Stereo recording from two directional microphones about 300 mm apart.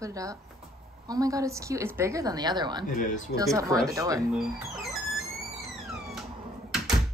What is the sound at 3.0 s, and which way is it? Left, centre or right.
Speech, left.